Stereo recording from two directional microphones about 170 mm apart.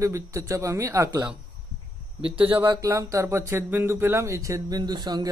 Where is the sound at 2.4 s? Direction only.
15° right (ahead or behind).